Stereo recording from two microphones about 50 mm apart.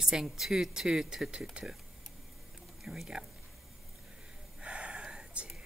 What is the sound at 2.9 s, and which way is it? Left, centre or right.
Speech, centre.